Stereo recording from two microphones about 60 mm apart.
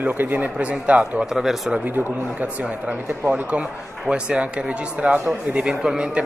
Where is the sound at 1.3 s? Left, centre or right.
Centre.